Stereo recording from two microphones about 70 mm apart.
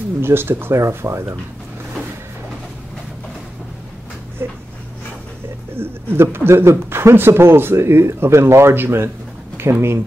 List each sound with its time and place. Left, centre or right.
0.2 s speech: right
4.4 s speech: right
5.8 s speech: right